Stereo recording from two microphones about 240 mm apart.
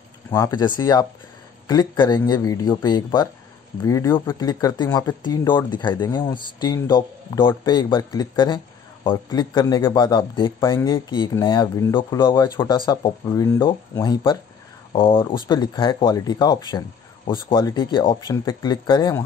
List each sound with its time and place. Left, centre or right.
0.3 s speech: centre